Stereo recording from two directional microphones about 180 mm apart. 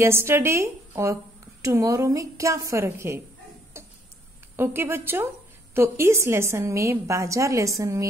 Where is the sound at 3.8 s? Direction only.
15° right (ahead or behind).